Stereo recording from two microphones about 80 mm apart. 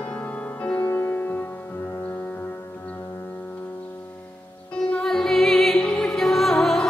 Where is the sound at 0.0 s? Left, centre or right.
Centre.